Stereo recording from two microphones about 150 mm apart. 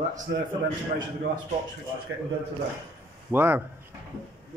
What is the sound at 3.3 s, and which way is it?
Speech, 10° right (ahead or behind).